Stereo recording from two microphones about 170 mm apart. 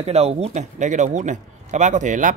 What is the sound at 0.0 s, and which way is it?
Speech, 35° right (ahead or behind).